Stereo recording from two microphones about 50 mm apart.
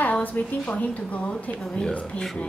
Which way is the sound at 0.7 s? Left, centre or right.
Left.